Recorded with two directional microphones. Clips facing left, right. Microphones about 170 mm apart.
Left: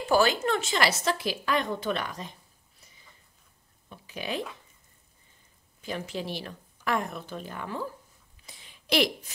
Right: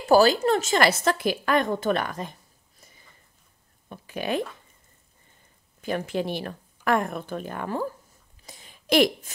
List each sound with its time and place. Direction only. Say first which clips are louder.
0.1 s a woman's voice: right 6 dB; 35° right (ahead or behind)
3.9 s speech: right 6 dB; 55° right (ahead or behind)
5.8 s a woman's voice: right 7 dB; 55° right (ahead or behind)
8.5 s a sound: right 5 dB; 45° right (ahead or behind)